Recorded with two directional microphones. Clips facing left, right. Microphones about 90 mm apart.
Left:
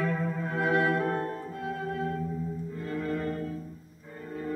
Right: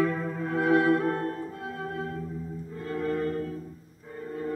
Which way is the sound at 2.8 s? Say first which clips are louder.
Right 3 dB; 40° right (ahead or behind).